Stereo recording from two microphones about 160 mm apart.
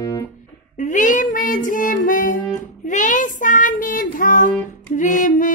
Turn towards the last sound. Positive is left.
turn(degrees=55)  # may be behind; listen again after turning